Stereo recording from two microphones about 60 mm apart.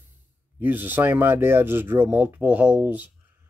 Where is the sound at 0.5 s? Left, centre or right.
Right.